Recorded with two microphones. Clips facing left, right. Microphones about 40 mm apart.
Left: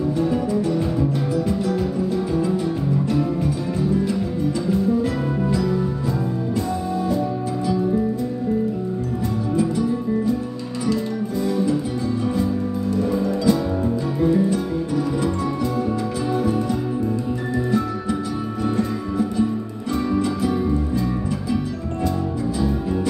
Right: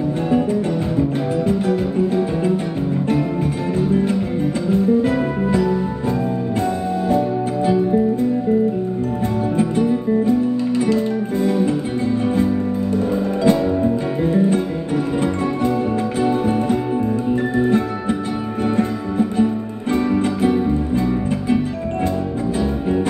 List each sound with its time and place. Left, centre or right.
0.3 s music: right
3.9 s music: right
7.1 s music: right
9.6 s music: right
12.9 s music: right
16.3 s music: right